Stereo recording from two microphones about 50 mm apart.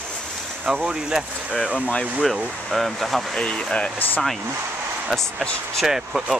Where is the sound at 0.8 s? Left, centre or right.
Centre.